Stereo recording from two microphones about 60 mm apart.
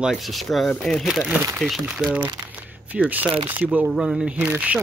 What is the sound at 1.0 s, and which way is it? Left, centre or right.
Speech, centre.